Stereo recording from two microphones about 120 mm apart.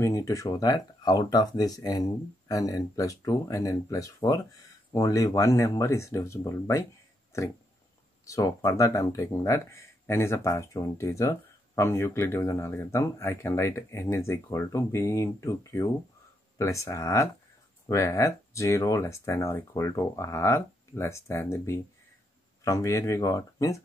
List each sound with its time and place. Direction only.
0.0 s speech: 25° left (ahead or behind)